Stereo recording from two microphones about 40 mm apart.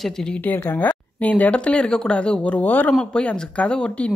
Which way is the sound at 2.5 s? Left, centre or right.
Left.